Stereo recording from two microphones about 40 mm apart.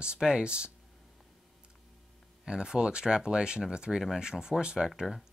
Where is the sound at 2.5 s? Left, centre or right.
Right.